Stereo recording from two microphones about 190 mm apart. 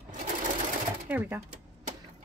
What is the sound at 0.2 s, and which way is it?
Sewing machine, 40° right (ahead or behind).